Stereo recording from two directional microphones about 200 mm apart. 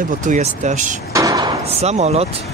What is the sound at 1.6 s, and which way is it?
Speech, 30° right (ahead or behind).